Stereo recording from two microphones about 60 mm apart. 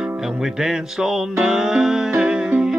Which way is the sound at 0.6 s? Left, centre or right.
Centre.